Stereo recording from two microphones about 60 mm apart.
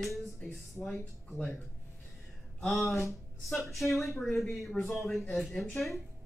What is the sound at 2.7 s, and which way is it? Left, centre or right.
Speech, centre.